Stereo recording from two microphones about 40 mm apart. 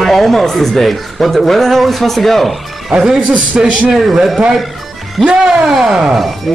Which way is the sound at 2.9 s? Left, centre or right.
Centre.